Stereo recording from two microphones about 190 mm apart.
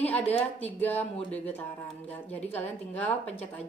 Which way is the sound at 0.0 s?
10° left (ahead or behind).